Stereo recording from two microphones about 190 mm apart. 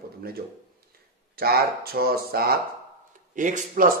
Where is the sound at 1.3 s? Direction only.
50° right (ahead or behind).